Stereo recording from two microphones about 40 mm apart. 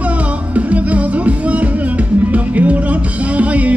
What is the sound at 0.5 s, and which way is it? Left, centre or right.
Music, right.